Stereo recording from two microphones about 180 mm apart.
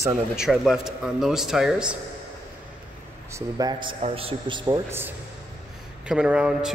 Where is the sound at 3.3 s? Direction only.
20° right (ahead or behind).